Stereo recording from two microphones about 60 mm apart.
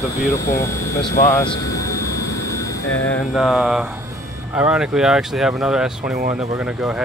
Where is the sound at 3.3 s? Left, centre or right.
Centre.